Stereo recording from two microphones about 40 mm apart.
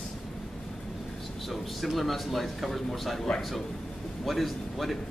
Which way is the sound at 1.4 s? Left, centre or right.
Centre.